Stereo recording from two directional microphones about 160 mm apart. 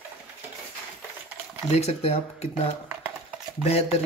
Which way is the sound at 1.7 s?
45° left (ahead or behind).